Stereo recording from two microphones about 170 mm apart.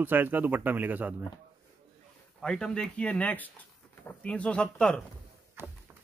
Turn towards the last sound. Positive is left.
turn(degrees=-15)  # may be behind; listen again after turning